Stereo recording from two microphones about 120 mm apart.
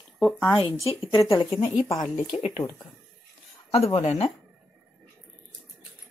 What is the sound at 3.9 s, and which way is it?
Speech, 55° left (ahead or behind).